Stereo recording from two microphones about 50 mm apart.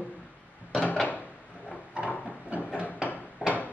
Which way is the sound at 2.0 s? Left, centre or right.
Right.